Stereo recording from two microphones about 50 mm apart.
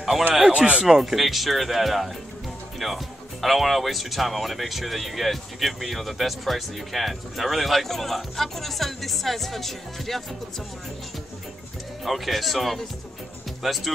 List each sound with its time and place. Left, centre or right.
0.1 s a sound: centre
0.5 s speech: right
0.8 s speech: centre
12.0 s speech: centre